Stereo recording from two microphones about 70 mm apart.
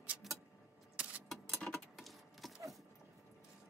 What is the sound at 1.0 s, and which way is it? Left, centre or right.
Keys jangling, centre.